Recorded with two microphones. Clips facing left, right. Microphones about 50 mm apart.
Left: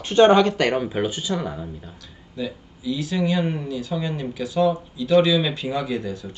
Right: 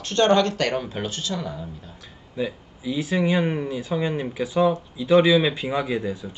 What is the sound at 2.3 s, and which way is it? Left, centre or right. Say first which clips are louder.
Speech: right 2 dB; right.